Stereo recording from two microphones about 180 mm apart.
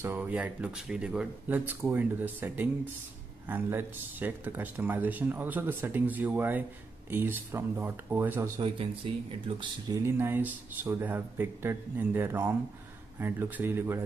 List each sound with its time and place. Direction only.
0.0 s speech: 10° right (ahead or behind)
8.5 s speech: 30° right (ahead or behind); by 14.0 s 15° right (ahead or behind)